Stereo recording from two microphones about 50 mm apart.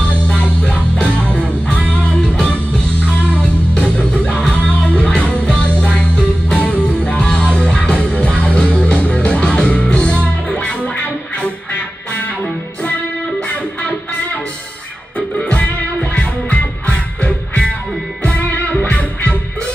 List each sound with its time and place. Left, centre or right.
0.6 s music: centre
15.1 s music: left